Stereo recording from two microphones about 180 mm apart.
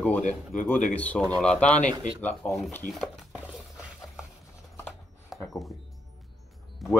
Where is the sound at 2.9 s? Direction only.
Centre (ahead or behind).